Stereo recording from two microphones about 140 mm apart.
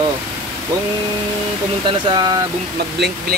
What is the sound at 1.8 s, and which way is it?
Speech, 30° right (ahead or behind).